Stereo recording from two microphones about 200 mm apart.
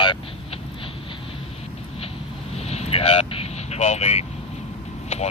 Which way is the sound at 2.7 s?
30° left (ahead or behind).